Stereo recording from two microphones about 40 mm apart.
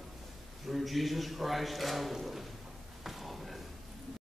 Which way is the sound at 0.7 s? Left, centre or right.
Centre.